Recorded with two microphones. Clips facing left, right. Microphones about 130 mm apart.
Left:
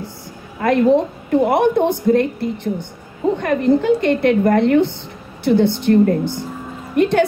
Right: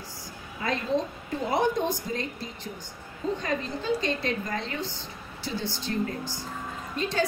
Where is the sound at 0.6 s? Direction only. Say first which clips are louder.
Left 14 dB; 65° left (ahead or behind).